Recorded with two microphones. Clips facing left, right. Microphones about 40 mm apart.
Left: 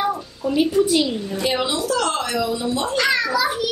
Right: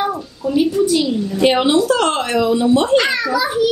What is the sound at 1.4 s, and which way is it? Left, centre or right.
Speech, right.